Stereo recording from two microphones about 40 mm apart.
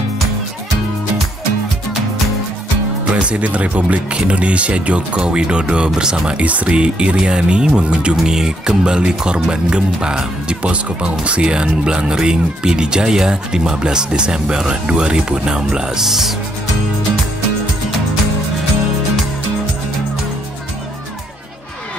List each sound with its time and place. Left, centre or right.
3.1 s speech: right
6.4 s speech: right
8.3 s speech: centre